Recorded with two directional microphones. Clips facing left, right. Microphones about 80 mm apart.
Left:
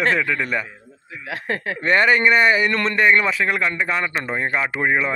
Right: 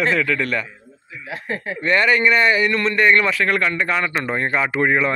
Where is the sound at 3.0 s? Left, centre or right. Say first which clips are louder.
Right 1 dB; centre.